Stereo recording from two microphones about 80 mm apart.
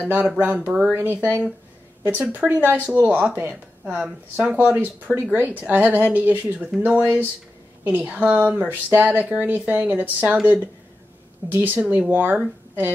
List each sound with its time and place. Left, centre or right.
0.0 s speech: right
2.3 s speech: right